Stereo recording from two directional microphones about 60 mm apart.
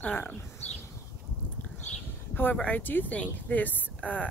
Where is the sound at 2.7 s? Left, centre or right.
Left.